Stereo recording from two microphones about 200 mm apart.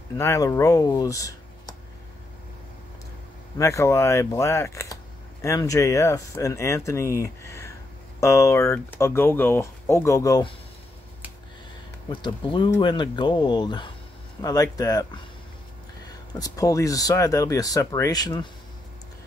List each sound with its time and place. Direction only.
0.2 s speech: 15° left (ahead or behind)
3.5 s speech: 15° left (ahead or behind)
12.1 s speech: 25° left (ahead or behind)
16.1 s speech: 20° left (ahead or behind)